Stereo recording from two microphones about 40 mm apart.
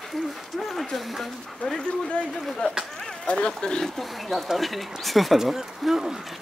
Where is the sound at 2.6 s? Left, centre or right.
Left.